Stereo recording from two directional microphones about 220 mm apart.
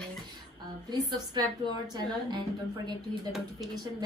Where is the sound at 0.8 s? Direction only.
20° right (ahead or behind).